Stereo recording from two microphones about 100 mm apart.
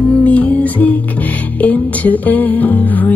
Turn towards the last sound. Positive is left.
turn(degrees=15)  # may be behind; listen again after turning